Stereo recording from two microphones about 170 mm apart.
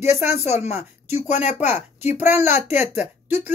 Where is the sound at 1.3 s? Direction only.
45° left (ahead or behind).